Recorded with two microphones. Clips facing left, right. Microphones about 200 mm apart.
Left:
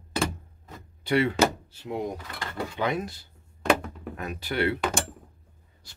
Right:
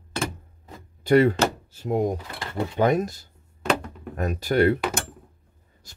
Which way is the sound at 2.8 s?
45° right (ahead or behind).